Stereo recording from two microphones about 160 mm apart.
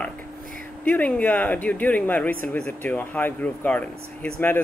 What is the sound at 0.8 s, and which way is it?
Speech, 10° left (ahead or behind).